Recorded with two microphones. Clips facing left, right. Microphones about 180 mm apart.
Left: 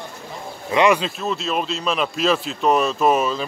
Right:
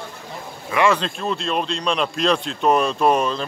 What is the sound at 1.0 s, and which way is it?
Speech, 5° left (ahead or behind).